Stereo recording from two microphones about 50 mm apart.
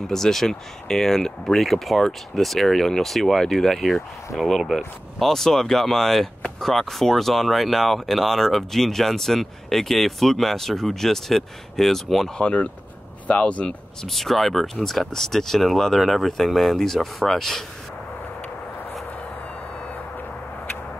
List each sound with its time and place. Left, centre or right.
0.0 s speech: centre
12.4 s speech: left
14.0 s speech: centre